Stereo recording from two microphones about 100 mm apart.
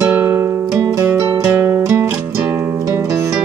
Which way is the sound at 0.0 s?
20° right (ahead or behind).